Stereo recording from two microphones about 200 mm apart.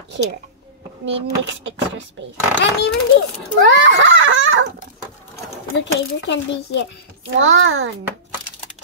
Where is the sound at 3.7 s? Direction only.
65° right (ahead or behind).